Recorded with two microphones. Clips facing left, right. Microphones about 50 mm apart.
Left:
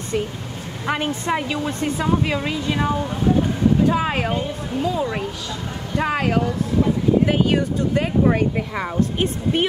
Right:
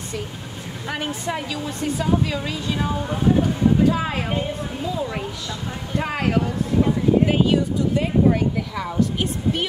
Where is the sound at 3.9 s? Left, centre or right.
Left.